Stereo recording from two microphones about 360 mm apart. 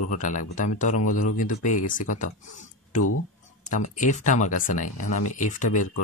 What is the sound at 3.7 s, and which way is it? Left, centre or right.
Speech, left.